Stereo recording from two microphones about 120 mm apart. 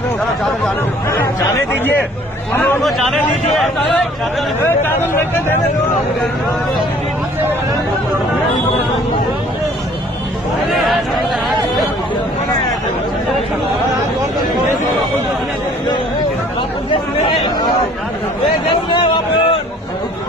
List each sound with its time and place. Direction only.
2.5 s speech: 20° left (ahead or behind)
4.6 s speech: 20° left (ahead or behind)
10.7 s speech: centre (ahead or behind)
16.9 s chatter: 50° left (ahead or behind)
18.7 s a sound: 45° left (ahead or behind)